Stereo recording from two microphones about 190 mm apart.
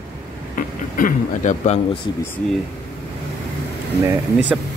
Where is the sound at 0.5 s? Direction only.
45° left (ahead or behind); by 2.1 s 30° left (ahead or behind).